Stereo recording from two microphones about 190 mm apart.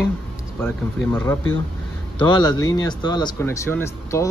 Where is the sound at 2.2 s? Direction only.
20° left (ahead or behind).